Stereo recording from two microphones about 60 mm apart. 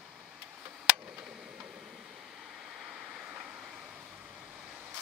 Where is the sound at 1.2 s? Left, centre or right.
Centre.